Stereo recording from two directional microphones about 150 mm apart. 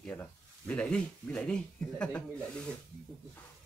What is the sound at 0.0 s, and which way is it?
Speech, 10° left (ahead or behind).